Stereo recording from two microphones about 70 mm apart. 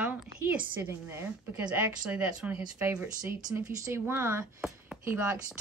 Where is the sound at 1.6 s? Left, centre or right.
Centre.